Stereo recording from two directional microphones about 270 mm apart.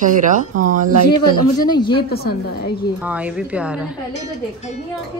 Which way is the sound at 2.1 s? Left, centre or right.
Left.